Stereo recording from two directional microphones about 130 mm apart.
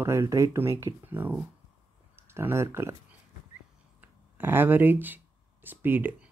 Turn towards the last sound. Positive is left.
turn(degrees=-15)  # may be behind; listen again after turning